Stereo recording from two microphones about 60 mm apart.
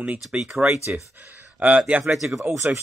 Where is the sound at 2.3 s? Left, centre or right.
Right.